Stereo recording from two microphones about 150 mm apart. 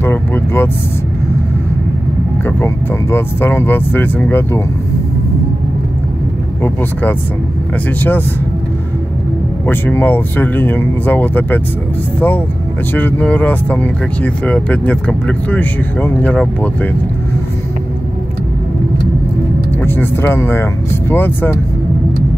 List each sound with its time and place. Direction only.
0.0 s speech: 15° left (ahead or behind)
2.4 s speech: 15° left (ahead or behind)
6.6 s speech: 10° left (ahead or behind)
9.7 s speech: 15° left (ahead or behind)
12.9 s speech: 10° left (ahead or behind)
19.8 s speech: 15° left (ahead or behind)